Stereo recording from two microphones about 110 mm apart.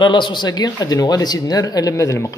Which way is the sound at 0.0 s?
45° left (ahead or behind).